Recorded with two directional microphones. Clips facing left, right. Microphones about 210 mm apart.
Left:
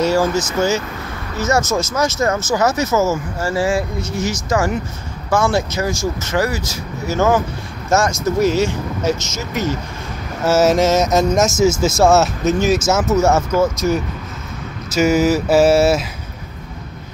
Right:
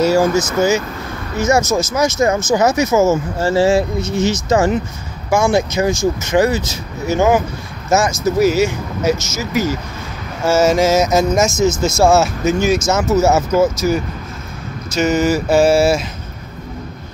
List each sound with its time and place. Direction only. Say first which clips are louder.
0.4 s speech: right 3 dB; 10° right (ahead or behind)